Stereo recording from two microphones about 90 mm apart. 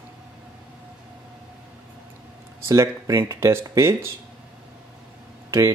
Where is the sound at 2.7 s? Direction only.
35° right (ahead or behind).